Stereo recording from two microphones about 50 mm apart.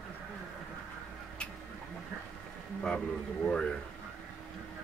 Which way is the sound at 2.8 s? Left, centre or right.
Left.